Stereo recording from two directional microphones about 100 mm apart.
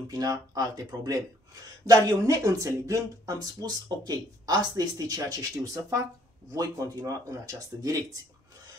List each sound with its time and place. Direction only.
0.1 s speech: 35° right (ahead or behind)